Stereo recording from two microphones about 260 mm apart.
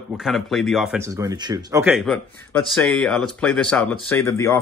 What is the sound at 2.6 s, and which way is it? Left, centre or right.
Speech, centre.